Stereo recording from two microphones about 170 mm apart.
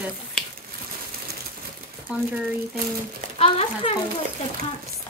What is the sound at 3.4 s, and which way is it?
Speech, 35° left (ahead or behind).